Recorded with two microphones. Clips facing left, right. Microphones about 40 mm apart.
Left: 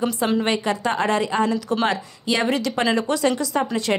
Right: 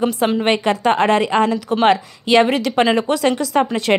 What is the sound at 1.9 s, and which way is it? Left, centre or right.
Speech, right.